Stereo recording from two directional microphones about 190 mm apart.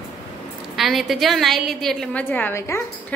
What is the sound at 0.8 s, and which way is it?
A woman's voice, centre (ahead or behind).